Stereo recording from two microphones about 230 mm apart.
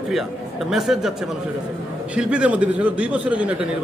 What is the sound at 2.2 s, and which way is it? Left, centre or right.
A man's voice, centre.